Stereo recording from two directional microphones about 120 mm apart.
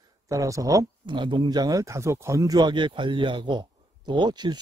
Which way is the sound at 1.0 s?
40° right (ahead or behind).